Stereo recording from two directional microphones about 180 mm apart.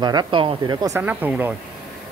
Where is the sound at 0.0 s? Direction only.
25° right (ahead or behind).